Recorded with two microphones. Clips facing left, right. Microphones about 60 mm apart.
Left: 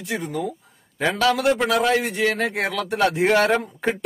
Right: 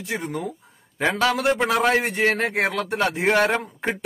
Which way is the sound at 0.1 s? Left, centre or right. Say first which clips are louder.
Left 2 dB; right.